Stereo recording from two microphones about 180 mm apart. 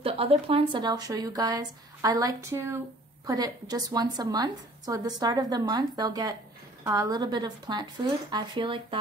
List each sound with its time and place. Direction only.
0.0 s a woman's voice: 30° right (ahead or behind)